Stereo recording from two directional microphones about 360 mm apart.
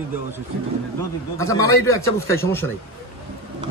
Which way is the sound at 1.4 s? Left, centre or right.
Centre.